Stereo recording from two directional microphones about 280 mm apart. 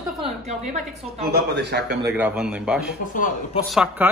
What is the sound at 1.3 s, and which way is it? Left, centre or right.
Speech, right.